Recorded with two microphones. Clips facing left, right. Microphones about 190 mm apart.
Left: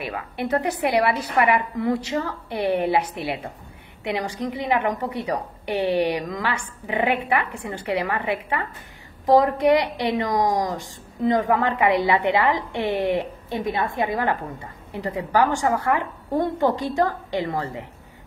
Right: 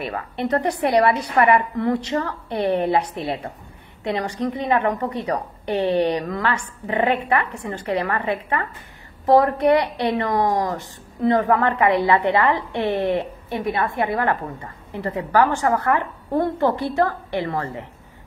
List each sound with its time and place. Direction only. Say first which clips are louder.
0.0 s a woman's voice: right 2 dB; centre (ahead or behind)